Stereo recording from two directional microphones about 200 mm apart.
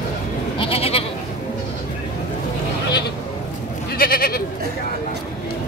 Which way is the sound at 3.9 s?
45° left (ahead or behind).